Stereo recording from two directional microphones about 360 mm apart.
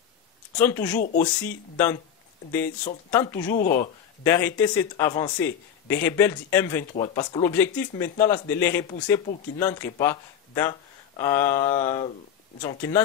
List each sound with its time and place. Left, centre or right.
0.6 s speech: centre
0.9 s speech: left
1.2 s speech: centre
3.1 s speech: centre
3.5 s speech: left
4.2 s speech: centre